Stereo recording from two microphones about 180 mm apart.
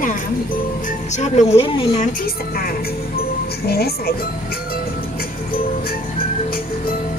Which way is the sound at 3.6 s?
60° left (ahead or behind).